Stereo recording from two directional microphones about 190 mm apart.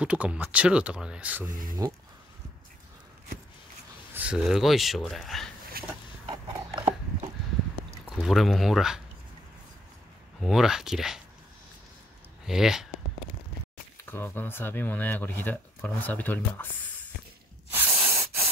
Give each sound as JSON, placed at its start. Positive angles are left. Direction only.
{"t": 0.0, "sound": "speech", "side_deg": -5}
{"t": 1.5, "sound": "speech", "side_deg": -45}
{"t": 4.1, "sound": "speech", "side_deg": -5}
{"t": 5.7, "sound": "a sound", "side_deg": -50}
{"t": 6.2, "sound": "a sound", "side_deg": -25}
{"t": 8.2, "sound": "speech", "side_deg": 0}
{"t": 10.4, "sound": "speech", "side_deg": 0}
{"t": 12.4, "sound": "speech", "side_deg": 0}
{"t": 14.0, "sound": "speech", "side_deg": 10}
{"t": 17.6, "sound": "spray", "side_deg": -10}